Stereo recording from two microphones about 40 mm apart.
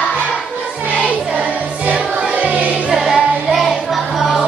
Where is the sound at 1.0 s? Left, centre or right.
Right.